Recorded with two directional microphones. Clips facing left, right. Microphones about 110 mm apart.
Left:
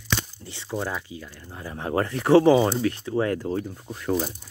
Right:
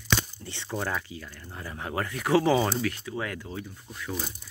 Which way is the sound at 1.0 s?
20° left (ahead or behind).